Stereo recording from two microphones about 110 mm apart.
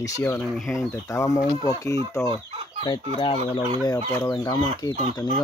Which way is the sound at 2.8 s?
40° left (ahead or behind).